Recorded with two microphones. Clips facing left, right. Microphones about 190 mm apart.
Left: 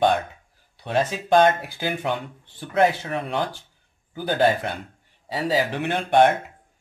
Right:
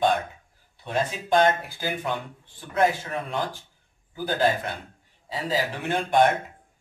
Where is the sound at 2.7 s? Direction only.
65° left (ahead or behind).